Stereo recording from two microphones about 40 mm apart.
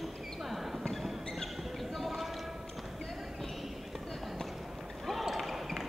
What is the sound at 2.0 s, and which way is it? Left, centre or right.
Clip-clop, centre.